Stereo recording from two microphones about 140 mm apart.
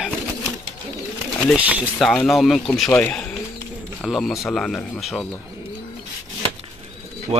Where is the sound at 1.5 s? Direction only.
10° right (ahead or behind).